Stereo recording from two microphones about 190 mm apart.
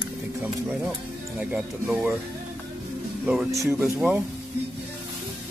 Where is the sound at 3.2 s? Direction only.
5° right (ahead or behind).